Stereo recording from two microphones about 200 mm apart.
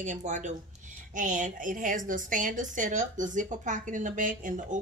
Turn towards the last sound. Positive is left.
turn(degrees=-40)  # may be behind; listen again after turning